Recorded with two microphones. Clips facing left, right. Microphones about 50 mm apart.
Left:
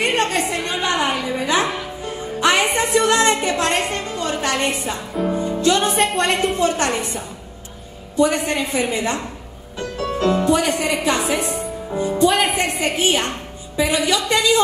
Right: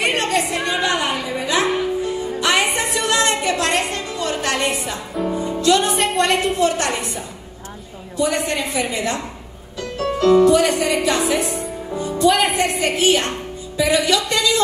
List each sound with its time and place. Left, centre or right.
0.0 s a sound: left
0.7 s music: left
2.4 s a sound: left
5.2 s music: left
5.9 s speech: centre
6.6 s a woman's voice: left
8.2 s a woman's voice: left
9.8 s music: left
10.8 s a woman's voice: left
12.3 s speech: centre
12.7 s a woman's voice: left